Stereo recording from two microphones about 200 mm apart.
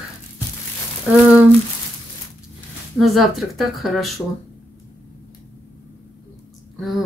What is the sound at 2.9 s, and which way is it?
Speech, centre (ahead or behind).